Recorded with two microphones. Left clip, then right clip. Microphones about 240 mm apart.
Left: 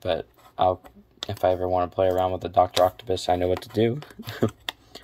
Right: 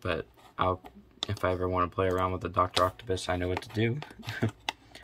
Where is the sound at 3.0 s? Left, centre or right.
Centre.